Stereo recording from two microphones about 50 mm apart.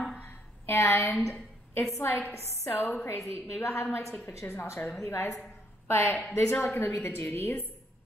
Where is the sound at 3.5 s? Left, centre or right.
Left.